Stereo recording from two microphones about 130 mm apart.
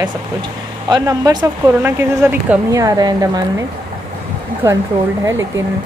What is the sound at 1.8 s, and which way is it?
Speech, 20° right (ahead or behind).